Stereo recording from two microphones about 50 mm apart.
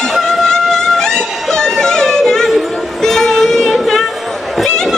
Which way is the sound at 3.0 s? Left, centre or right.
Centre.